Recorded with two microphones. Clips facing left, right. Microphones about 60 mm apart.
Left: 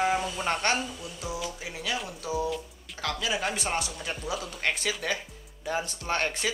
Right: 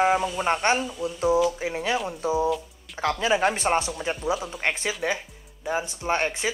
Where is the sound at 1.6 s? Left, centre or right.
Right.